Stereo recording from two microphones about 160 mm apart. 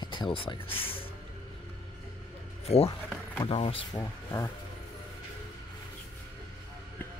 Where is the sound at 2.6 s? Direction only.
40° left (ahead or behind).